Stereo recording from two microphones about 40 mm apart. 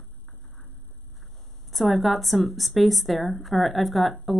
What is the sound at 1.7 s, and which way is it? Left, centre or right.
A woman's voice, centre.